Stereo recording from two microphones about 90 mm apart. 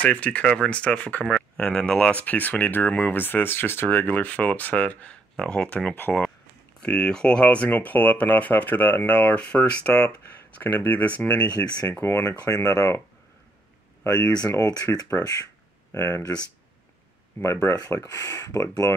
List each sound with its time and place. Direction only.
0.0 s speech: 15° left (ahead or behind)
11.4 s speech: 50° left (ahead or behind)
12.0 s speech: 30° left (ahead or behind)
12.3 s speech: 40° left (ahead or behind)
14.0 s speech: 45° left (ahead or behind)
17.4 s speech: 35° left (ahead or behind)